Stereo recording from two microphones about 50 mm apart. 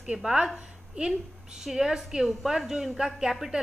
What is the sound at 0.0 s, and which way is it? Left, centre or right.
Speech, centre.